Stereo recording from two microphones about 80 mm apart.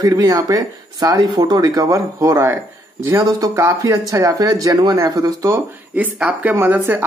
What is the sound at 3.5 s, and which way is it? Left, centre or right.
Speech, right.